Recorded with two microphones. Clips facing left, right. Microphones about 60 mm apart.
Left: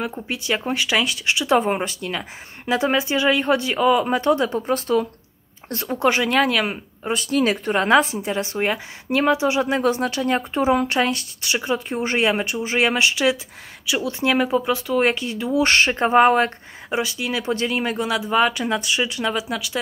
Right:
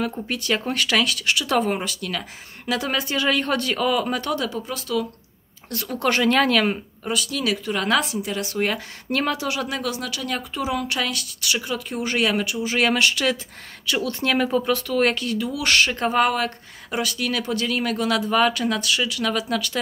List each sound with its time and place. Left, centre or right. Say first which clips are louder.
0.0 s speech: right 1 dB; centre
4.5 s speech: left 7 dB; left; by 6.8 s centre
7.0 s speech: left 5 dB; left; by 19.8 s centre